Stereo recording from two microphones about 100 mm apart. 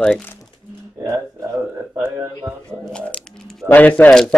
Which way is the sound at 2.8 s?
10° left (ahead or behind).